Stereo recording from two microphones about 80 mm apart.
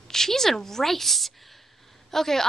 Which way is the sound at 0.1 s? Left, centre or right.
Centre.